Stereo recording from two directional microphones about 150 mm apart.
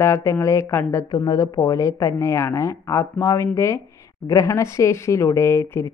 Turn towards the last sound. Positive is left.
turn(degrees=15)  # may be behind; listen again after turning